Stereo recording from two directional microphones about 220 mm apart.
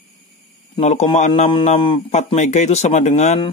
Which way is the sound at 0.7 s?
30° left (ahead or behind).